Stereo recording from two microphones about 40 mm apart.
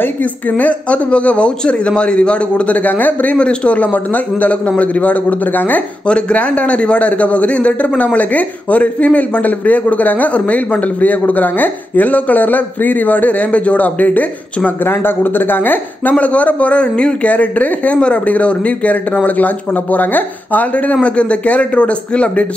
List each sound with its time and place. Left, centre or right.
0.2 s speech: left
3.3 s speech: left
6.0 s speech: left
14.9 s speech: left
16.2 s speech: left
17.9 s speech: left